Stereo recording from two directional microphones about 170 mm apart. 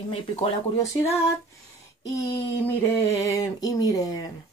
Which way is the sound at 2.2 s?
25° left (ahead or behind).